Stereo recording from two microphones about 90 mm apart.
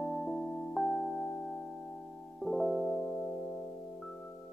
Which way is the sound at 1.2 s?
20° left (ahead or behind).